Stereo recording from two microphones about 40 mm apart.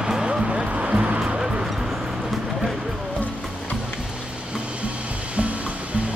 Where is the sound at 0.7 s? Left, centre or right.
Right.